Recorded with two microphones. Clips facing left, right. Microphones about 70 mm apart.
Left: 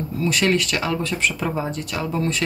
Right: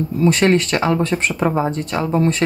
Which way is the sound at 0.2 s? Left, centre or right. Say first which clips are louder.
Right 6 dB; right.